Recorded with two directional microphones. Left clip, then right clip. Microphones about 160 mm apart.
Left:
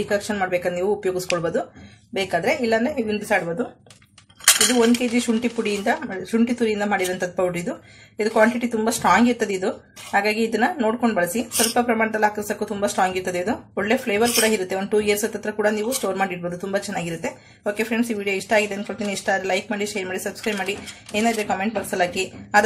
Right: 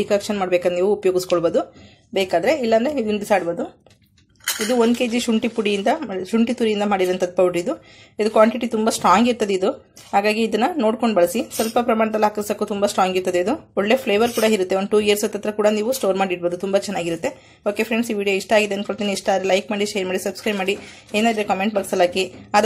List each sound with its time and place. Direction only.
0.1 s speech: 35° right (ahead or behind)
2.1 s speech: 40° right (ahead or behind)
5.1 s speech: 40° right (ahead or behind)